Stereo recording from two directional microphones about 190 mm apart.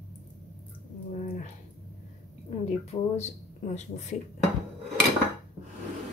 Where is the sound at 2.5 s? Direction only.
35° left (ahead or behind).